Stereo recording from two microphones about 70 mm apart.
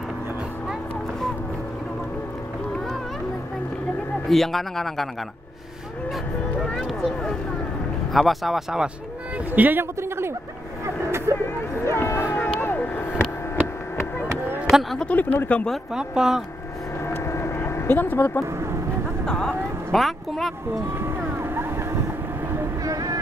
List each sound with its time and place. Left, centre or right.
4.3 s speech: centre
6.8 s speech: centre
9.5 s a man's voice: right
11.1 s vehicle: right
11.8 s speech: left
12.4 s boat: left
14.7 s speech: centre
15.0 s speech: centre
15.9 s speech: centre
17.1 s vehicle: left
19.2 s speech: centre
22.8 s vehicle: right